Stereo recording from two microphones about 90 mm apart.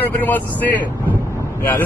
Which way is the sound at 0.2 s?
20° left (ahead or behind).